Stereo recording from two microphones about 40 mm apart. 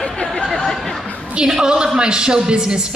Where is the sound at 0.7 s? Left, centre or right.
Centre.